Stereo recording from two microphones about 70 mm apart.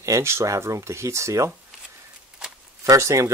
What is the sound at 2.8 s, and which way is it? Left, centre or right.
Speech, right.